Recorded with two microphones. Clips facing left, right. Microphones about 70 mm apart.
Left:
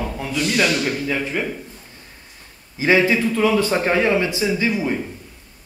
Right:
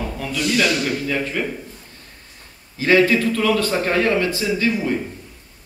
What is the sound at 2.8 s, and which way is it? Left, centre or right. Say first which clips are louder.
A man's voice: right 1 dB; centre.